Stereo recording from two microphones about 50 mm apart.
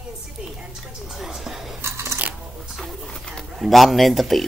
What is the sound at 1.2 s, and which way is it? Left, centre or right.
Speech, centre.